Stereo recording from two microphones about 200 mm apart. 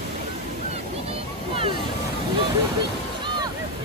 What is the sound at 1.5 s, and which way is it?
Boat, 25° right (ahead or behind).